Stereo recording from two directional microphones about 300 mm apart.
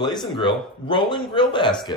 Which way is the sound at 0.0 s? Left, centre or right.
Centre.